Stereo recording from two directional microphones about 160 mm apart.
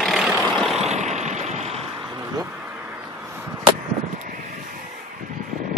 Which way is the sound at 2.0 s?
20° right (ahead or behind).